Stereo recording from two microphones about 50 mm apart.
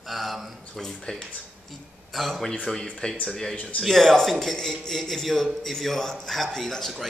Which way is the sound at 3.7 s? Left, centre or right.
Centre.